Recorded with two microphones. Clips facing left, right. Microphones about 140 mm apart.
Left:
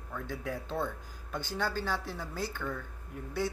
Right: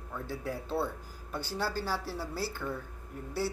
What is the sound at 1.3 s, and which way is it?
A woman's voice, 10° right (ahead or behind).